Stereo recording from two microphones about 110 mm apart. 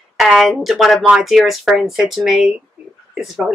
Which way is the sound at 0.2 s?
Centre (ahead or behind).